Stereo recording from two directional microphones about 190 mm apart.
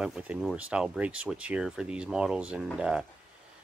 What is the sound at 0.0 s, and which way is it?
Speech, 5° right (ahead or behind).